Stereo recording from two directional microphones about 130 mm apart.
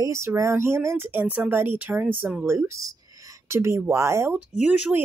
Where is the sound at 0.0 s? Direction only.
20° right (ahead or behind).